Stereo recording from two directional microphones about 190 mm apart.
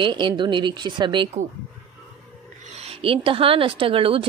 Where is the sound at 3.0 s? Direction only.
30° right (ahead or behind).